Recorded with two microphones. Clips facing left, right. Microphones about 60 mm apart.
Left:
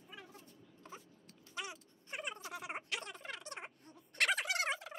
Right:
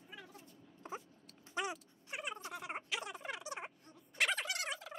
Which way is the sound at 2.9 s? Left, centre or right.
Centre.